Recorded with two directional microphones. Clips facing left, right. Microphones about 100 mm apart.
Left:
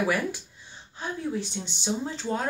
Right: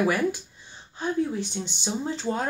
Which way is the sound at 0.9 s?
Centre (ahead or behind).